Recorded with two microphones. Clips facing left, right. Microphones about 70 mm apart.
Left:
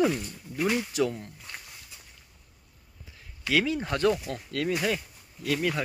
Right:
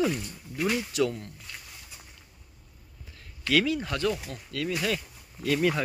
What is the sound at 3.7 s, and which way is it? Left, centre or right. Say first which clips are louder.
Speech: even; left.